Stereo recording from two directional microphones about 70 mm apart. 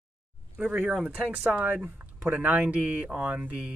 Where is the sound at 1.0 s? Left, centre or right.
Centre.